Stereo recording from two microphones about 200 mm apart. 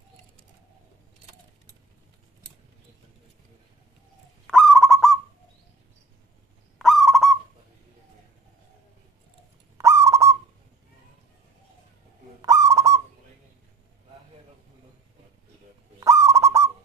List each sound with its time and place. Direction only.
4.5 s owl: centre (ahead or behind)
6.8 s owl: centre (ahead or behind)
9.8 s owl: 15° right (ahead or behind)
12.4 s goose: 15° right (ahead or behind)
16.0 s owl: 15° right (ahead or behind)